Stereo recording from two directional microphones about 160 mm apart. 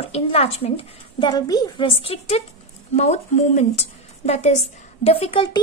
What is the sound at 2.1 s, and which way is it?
A woman's voice, 40° left (ahead or behind).